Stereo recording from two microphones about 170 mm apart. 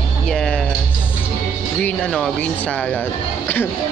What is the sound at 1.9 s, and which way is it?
Speech, 5° left (ahead or behind).